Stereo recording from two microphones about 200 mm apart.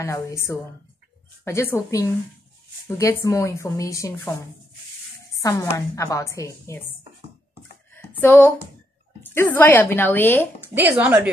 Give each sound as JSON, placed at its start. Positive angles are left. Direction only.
{"t": 0.0, "sound": "a woman's voice", "side_deg": 15}
{"t": 5.4, "sound": "a woman's voice", "side_deg": 15}
{"t": 7.9, "sound": "a sound", "side_deg": 10}
{"t": 9.2, "sound": "a woman's voice", "side_deg": 10}
{"t": 10.7, "sound": "speech", "side_deg": -5}